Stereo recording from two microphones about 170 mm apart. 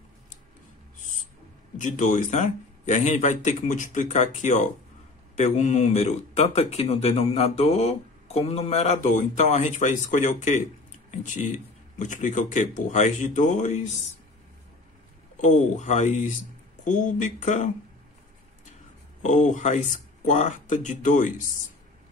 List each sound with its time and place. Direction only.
1.8 s a man's voice: 45° left (ahead or behind)
15.4 s a man's voice: 45° left (ahead or behind)
19.2 s a man's voice: 45° left (ahead or behind)